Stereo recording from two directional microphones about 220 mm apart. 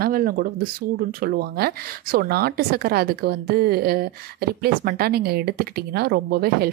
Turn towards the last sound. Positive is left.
turn(degrees=-45)  # may be behind; listen again after turning